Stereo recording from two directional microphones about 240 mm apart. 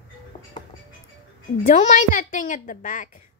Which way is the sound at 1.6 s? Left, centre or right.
Left.